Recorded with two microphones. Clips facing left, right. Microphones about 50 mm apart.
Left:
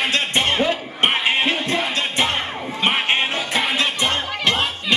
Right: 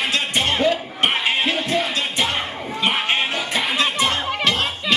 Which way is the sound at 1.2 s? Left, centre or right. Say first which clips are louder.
Left 1 dB; left.